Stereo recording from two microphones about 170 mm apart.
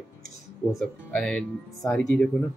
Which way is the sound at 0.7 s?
5° left (ahead or behind).